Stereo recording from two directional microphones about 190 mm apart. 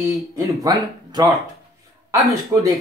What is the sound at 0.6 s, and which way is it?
Speech, 20° right (ahead or behind).